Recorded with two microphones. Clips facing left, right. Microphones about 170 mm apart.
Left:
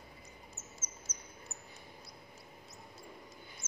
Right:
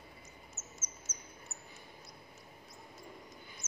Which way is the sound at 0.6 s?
30° left (ahead or behind).